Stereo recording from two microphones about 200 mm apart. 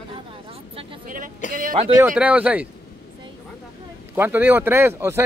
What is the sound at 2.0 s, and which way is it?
Speech, 5° right (ahead or behind).